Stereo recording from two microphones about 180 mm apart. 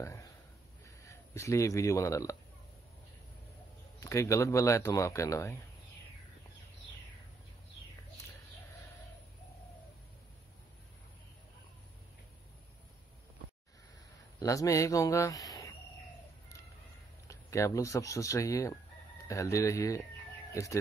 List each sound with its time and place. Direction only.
0.0 s speech: 15° left (ahead or behind)
4.0 s speech: 15° left (ahead or behind)
14.4 s speech: 20° left (ahead or behind)
17.3 s speech: 15° left (ahead or behind)